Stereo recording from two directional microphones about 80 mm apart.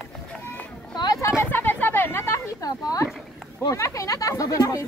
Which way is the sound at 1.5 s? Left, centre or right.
Left.